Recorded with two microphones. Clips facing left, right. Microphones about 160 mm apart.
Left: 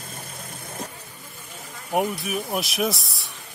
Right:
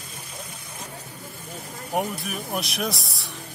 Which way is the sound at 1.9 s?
5° left (ahead or behind).